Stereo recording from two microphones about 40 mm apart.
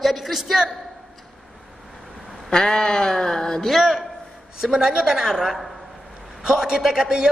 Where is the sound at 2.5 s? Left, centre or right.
Left.